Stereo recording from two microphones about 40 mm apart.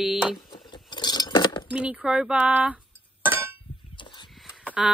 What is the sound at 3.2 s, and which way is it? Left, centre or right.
Chink, right.